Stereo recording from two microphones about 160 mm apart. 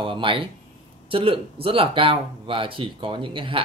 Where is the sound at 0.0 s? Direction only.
30° right (ahead or behind).